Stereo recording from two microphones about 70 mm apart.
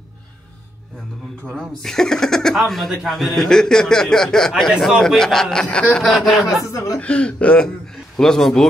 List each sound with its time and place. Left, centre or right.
1.6 s speech: centre
6.0 s speech: centre
6.6 s speech: left
7.0 s speech: centre